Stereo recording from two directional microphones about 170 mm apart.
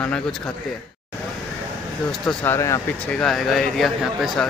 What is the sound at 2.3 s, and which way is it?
Speech, 15° left (ahead or behind).